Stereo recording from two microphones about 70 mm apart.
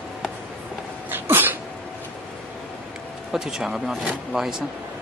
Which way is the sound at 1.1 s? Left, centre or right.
Right.